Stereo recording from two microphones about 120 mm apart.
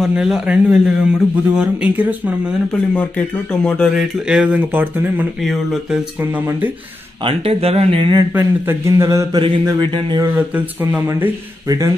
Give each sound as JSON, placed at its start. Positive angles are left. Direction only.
{"t": 0.0, "sound": "speech", "side_deg": -5}
{"t": 2.9, "sound": "speech", "side_deg": 10}
{"t": 5.4, "sound": "speech", "side_deg": 0}
{"t": 6.3, "sound": "speech", "side_deg": -15}
{"t": 7.2, "sound": "speech", "side_deg": -55}
{"t": 8.3, "sound": "speech", "side_deg": -20}
{"t": 9.3, "sound": "speech", "side_deg": -40}
{"t": 10.3, "sound": "speech", "side_deg": -15}
{"t": 11.1, "sound": "speech", "side_deg": -25}